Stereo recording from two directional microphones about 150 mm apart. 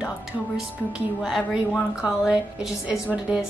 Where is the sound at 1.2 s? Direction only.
5° right (ahead or behind).